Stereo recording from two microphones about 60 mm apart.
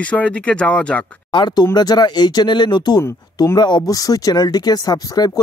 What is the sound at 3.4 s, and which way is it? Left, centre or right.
Speech, left.